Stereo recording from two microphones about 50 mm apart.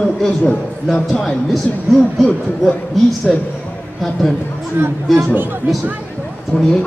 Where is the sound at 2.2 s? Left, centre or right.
Left.